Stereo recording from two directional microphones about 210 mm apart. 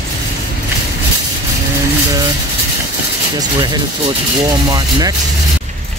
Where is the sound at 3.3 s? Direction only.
20° right (ahead or behind).